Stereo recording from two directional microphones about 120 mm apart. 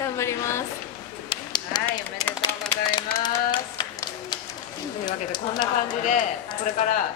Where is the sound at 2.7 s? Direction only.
40° left (ahead or behind).